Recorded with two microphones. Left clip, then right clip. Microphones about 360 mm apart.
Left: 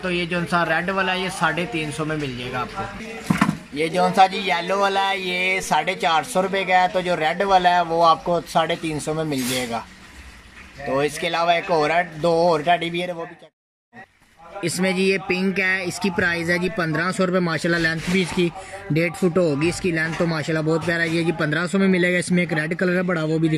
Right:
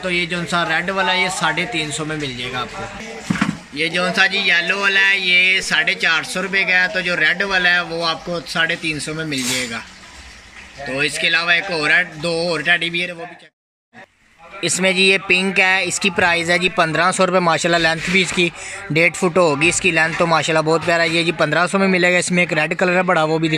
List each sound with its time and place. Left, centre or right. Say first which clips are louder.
0.0 s a man's voice: right 4 dB; centre
3.7 s speech: right 1 dB; centre
11.0 s speech: right 5 dB; centre
14.6 s speech: right 6 dB; centre
20.6 s a man's voice: right 5 dB; right
20.9 s speech: right 5 dB; centre